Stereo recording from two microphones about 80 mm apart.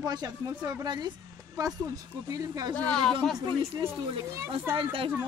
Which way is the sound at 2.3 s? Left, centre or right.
Right.